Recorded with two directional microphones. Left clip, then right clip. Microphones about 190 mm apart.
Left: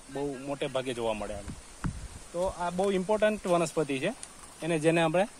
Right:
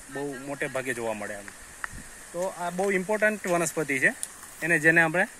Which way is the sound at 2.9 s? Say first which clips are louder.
Right 3 dB; 15° left (ahead or behind).